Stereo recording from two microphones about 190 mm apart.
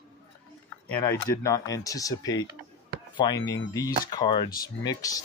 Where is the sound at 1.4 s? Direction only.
15° left (ahead or behind).